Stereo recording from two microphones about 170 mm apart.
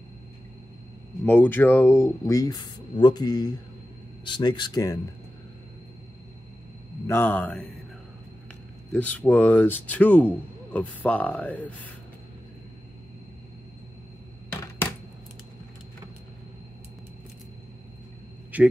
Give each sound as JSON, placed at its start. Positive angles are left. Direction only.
{"t": 1.2, "sound": "speech", "side_deg": 10}
{"t": 7.1, "sound": "speech", "side_deg": 10}
{"t": 8.9, "sound": "speech", "side_deg": 10}
{"t": 18.5, "sound": "a man's voice", "side_deg": -10}